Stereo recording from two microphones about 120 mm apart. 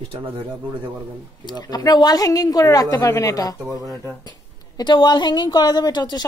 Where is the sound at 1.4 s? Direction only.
35° left (ahead or behind).